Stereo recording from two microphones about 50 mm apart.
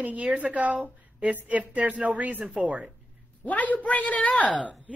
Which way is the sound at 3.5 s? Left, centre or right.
Left.